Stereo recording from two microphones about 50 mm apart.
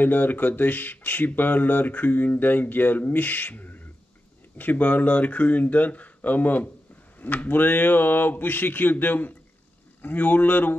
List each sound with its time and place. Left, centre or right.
0.0 s speech: left